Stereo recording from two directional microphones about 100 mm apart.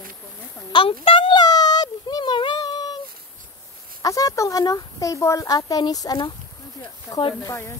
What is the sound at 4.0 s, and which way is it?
Speech, 35° left (ahead or behind).